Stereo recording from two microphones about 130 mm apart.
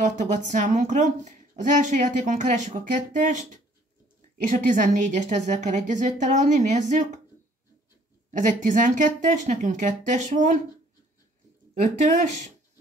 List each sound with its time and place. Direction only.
0.0 s speech: 70° right (ahead or behind)
4.5 s speech: 85° right
8.3 s speech: 80° right
11.8 s speech: 75° right (ahead or behind)